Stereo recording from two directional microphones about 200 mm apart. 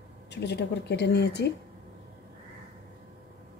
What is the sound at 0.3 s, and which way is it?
A woman's voice, 60° left (ahead or behind).